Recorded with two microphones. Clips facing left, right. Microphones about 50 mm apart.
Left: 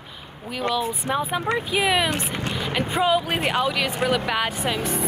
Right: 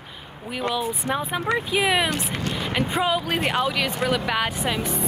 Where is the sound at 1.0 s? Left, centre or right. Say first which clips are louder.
Even; centre.